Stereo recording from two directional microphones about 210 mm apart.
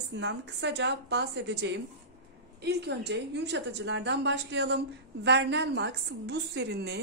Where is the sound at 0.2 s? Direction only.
55° right (ahead or behind).